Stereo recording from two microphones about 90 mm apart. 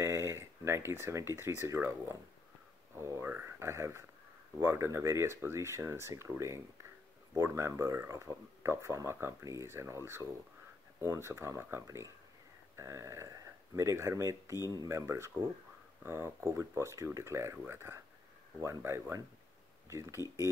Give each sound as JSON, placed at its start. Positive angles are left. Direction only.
{"t": 0.0, "sound": "speech", "side_deg": -30}